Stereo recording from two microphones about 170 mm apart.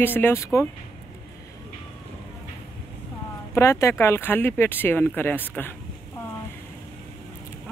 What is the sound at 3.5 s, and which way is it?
Speech, 15° left (ahead or behind).